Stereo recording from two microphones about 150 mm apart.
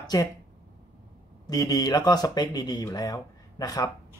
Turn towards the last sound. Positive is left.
turn(degrees=25)  # may be behind; listen again after turning